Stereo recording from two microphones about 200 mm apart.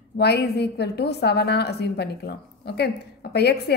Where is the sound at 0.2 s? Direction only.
55° left (ahead or behind).